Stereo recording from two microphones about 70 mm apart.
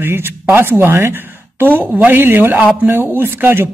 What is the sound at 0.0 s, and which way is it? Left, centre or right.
Speech, right.